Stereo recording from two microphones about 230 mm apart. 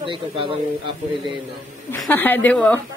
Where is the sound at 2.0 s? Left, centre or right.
Centre.